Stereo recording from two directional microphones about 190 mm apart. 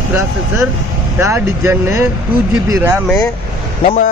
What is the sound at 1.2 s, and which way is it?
Speech, 15° right (ahead or behind).